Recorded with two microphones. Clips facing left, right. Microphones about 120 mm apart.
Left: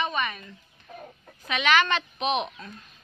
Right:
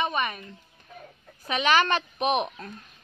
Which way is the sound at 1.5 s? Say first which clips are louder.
Right 1 dB; 35° right (ahead or behind).